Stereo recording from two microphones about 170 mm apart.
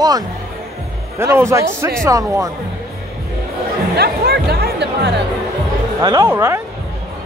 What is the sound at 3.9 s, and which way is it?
Speech, 70° right (ahead or behind).